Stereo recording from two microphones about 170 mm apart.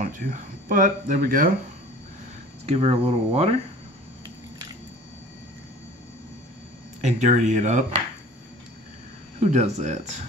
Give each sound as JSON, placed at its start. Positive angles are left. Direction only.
{"t": 0.0, "sound": "speech", "side_deg": -50}
{"t": 2.6, "sound": "speech", "side_deg": -35}
{"t": 7.0, "sound": "speech", "side_deg": -45}
{"t": 9.4, "sound": "speech", "side_deg": -45}